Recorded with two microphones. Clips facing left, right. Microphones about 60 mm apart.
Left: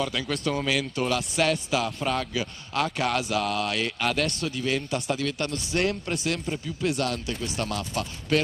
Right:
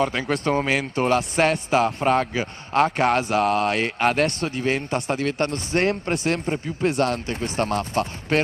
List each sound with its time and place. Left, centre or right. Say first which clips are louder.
0.0 s speech: right 5 dB; right